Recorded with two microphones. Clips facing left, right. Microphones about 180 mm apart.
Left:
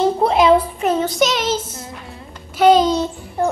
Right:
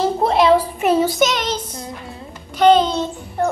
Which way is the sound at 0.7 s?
10° right (ahead or behind).